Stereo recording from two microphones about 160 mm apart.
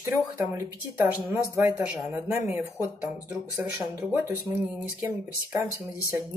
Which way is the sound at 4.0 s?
15° right (ahead or behind).